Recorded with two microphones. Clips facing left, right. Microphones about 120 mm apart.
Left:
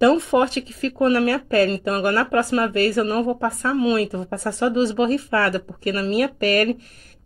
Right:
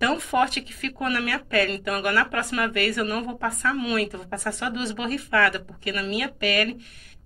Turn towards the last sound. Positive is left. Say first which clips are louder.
# left 6 dB
turn(degrees=40)  # may be behind; listen again after turning